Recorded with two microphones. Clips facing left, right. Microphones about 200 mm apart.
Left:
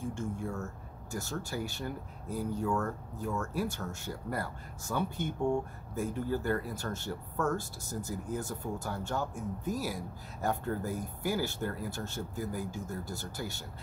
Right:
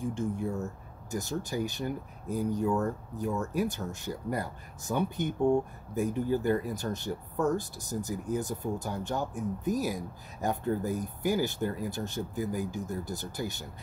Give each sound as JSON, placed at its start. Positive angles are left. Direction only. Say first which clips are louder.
{"t": 0.0, "sound": "speech", "louder": "right 5 dB", "side_deg": -15}